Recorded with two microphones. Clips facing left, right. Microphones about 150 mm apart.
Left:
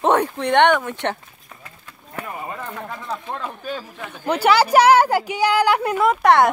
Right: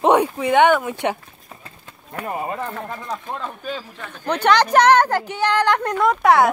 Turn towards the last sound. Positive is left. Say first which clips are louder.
# even
turn(degrees=0)  # may be behind; listen again after turning